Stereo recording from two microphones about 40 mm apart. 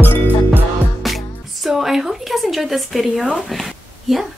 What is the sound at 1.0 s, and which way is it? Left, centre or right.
Music, centre.